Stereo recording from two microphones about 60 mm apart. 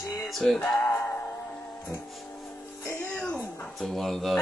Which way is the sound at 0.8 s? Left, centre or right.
Left.